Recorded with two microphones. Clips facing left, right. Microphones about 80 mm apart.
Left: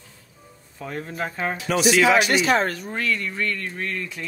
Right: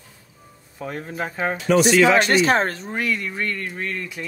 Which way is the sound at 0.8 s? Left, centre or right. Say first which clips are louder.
Right 1 dB; centre.